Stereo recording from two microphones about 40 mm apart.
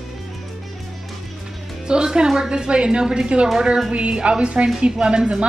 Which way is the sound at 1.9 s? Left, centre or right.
Right.